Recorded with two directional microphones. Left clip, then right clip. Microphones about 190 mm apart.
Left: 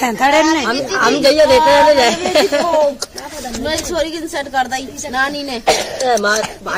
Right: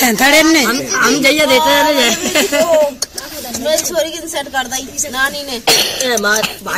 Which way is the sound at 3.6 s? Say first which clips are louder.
Right 4 dB; 50° left (ahead or behind).